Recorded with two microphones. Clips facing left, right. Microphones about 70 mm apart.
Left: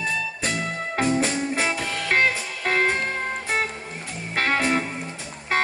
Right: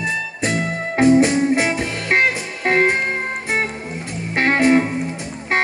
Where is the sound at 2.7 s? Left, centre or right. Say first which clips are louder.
Right 5 dB; right.